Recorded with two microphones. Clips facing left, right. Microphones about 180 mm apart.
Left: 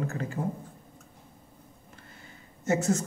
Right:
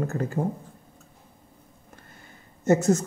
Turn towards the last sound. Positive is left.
turn(degrees=-40)  # may be behind; listen again after turning